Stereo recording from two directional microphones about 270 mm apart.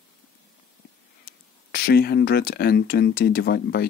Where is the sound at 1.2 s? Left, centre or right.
Left.